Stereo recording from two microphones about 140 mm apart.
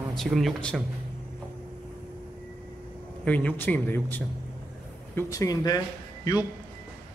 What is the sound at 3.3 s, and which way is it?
Speech, 10° left (ahead or behind).